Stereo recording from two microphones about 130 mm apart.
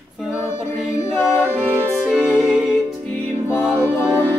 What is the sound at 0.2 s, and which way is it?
Music, 5° right (ahead or behind).